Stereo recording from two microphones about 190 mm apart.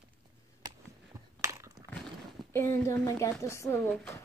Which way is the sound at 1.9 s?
5° left (ahead or behind).